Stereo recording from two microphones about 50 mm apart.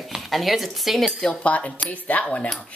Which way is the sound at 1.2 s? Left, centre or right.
Left.